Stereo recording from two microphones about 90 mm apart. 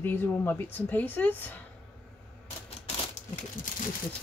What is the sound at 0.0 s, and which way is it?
A woman's voice, 25° left (ahead or behind).